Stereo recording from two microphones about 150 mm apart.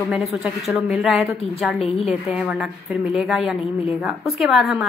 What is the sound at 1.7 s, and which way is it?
Speech, 40° left (ahead or behind).